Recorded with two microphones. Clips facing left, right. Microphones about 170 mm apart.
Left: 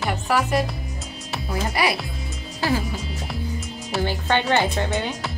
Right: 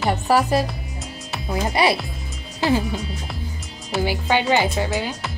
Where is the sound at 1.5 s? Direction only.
20° right (ahead or behind).